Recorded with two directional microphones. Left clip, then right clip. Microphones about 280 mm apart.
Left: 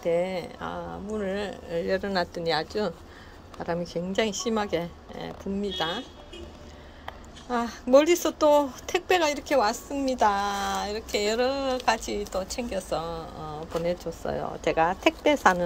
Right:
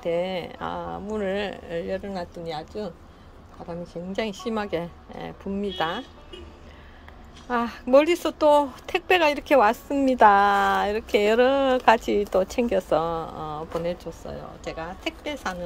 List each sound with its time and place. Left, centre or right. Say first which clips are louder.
0.0 s a woman's voice: even; centre
3.8 s a woman's voice: even; centre
7.4 s speech: right 2 dB; centre
14.2 s speech: left 7 dB; centre